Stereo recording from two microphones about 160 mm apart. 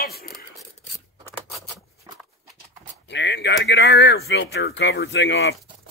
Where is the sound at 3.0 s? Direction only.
90° left.